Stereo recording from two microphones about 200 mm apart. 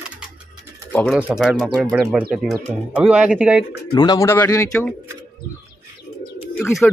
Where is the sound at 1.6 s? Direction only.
5° left (ahead or behind).